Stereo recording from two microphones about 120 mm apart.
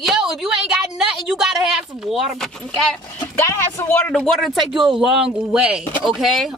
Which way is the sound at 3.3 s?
20° left (ahead or behind).